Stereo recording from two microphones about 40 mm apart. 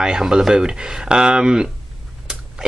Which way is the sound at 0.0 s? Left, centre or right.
Centre.